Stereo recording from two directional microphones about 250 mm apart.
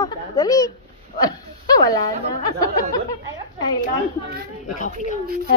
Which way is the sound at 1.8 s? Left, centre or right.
Centre.